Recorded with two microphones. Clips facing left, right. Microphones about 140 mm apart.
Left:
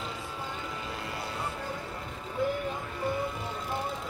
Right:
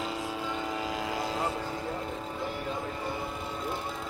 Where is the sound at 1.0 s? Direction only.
90° right.